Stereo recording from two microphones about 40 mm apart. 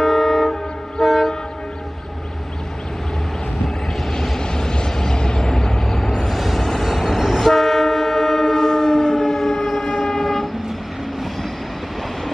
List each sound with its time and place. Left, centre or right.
0.0 s vehicle: centre
1.0 s train: centre
4.1 s vehicle: centre
7.3 s train: centre
10.0 s vehicle: centre